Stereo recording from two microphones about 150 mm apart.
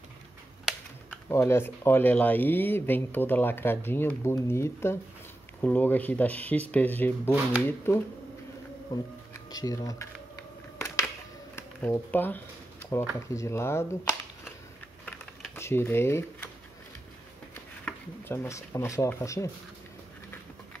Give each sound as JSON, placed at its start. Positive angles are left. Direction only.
{"t": 1.1, "sound": "speech", "side_deg": 15}
{"t": 11.5, "sound": "speech", "side_deg": 15}
{"t": 15.5, "sound": "speech", "side_deg": 15}
{"t": 17.8, "sound": "speech", "side_deg": 15}